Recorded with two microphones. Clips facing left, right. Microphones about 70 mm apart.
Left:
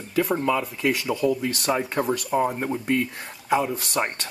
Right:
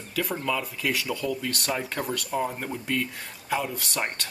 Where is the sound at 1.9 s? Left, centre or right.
Left.